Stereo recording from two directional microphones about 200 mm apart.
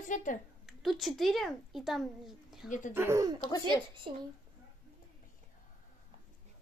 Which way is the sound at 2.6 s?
40° left (ahead or behind).